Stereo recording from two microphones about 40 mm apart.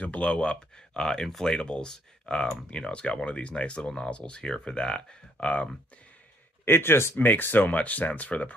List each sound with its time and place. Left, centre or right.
0.0 s speech: left
6.6 s speech: left
7.2 s speech: left